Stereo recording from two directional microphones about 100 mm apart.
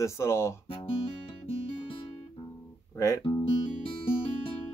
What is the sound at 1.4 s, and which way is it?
Music, 60° left (ahead or behind).